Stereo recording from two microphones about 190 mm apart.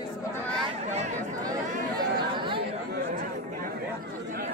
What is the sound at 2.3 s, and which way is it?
Chatter, 25° right (ahead or behind).